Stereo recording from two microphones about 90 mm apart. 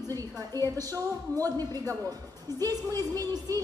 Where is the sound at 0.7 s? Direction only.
40° right (ahead or behind).